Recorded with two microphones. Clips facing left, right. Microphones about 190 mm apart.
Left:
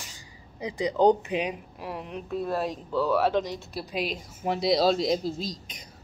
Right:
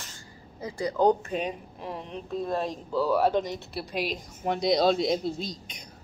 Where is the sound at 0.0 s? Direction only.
15° left (ahead or behind).